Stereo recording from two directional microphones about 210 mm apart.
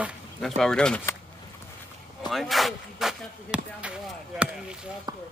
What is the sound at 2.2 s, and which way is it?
Speech, centre (ahead or behind).